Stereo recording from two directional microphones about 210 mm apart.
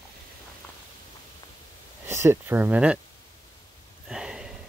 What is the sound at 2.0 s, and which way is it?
Speech, 10° right (ahead or behind).